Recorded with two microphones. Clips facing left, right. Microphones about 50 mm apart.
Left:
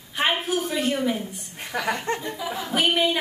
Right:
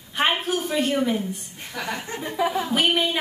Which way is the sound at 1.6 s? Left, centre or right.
Left.